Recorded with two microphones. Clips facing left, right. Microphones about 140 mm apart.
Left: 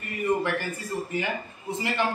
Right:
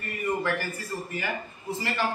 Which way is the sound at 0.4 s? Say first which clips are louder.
Left 1 dB; 20° left (ahead or behind).